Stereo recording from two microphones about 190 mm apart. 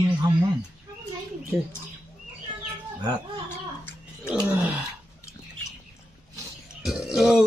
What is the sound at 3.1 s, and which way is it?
Speech, 20° right (ahead or behind).